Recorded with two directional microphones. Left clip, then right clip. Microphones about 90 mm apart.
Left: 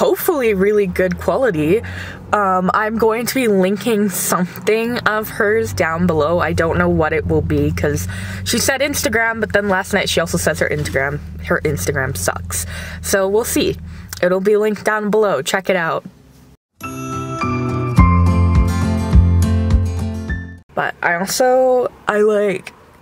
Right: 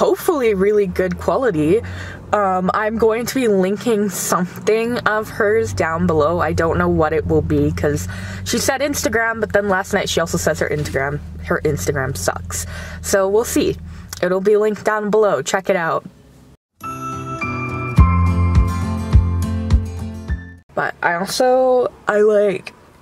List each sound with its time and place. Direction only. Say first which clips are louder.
0.0 s speech: left 1 dB; centre (ahead or behind)
16.9 s music: left 1 dB; centre (ahead or behind)